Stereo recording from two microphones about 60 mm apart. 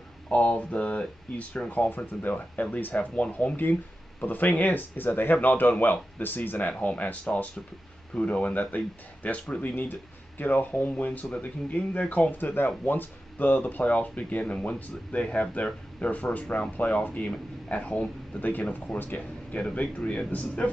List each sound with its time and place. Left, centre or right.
0.3 s speech: left
6.7 s speech: left